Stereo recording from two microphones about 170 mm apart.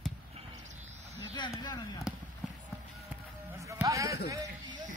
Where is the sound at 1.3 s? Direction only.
25° left (ahead or behind).